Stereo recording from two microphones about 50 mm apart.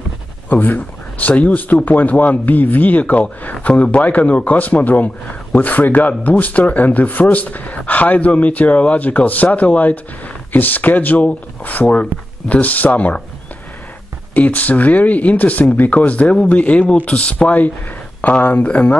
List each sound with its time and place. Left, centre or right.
0.5 s a man's voice: left
14.3 s a man's voice: left